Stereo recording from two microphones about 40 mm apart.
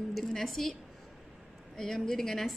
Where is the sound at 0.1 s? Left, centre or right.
Centre.